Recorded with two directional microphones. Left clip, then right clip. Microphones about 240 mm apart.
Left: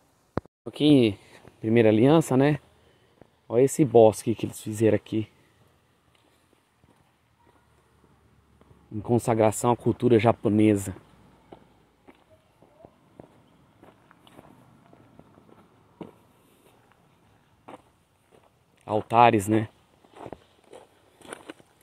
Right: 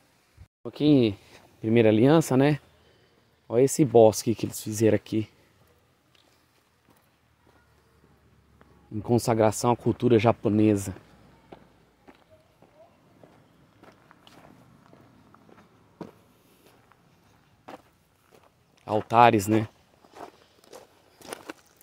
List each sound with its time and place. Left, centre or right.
0.9 s speech: centre
9.0 s speech: right
18.9 s speech: right
20.7 s walk: centre